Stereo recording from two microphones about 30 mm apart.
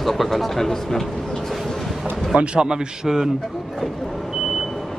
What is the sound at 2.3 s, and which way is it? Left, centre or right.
Speech, right.